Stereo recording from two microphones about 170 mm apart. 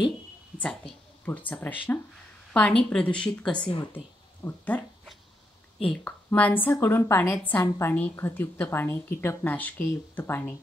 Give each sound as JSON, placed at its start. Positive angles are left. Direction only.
{"t": 0.6, "sound": "a woman's voice", "side_deg": 5}
{"t": 5.9, "sound": "a woman's voice", "side_deg": 10}